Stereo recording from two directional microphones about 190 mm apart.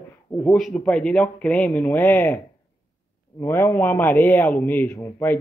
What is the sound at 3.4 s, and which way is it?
Speech, 15° left (ahead or behind).